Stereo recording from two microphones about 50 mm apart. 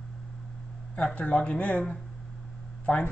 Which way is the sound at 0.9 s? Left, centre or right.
Left.